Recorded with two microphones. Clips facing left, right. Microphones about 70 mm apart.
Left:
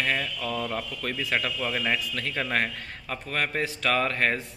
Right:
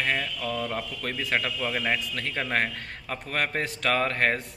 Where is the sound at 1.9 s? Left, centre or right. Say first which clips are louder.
Even; right.